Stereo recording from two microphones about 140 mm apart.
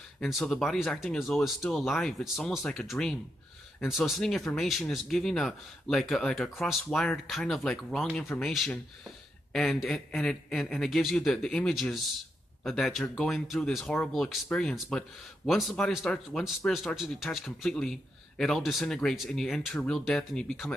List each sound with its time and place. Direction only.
0.2 s speech: centre (ahead or behind)